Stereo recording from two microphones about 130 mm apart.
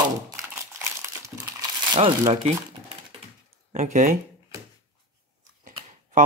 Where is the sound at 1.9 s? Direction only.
35° right (ahead or behind).